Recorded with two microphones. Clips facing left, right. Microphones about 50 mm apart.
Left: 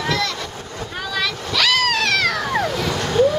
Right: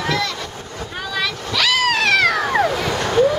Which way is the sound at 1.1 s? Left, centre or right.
Centre.